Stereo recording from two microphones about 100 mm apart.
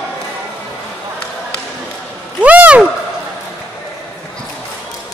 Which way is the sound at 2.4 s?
15° right (ahead or behind).